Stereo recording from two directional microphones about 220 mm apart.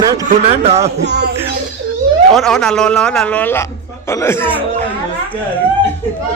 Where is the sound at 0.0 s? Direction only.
15° right (ahead or behind).